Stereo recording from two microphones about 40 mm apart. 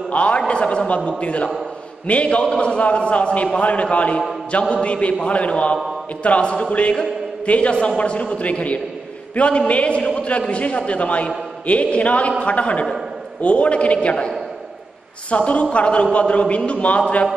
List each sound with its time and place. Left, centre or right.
0.1 s a man's voice: left
6.7 s music: left
8.0 s a man's voice: left